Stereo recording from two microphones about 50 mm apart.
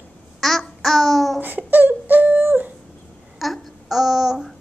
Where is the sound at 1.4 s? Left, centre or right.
Right.